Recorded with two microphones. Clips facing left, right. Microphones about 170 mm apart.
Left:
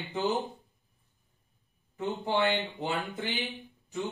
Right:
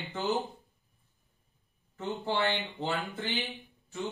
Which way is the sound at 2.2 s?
15° left (ahead or behind).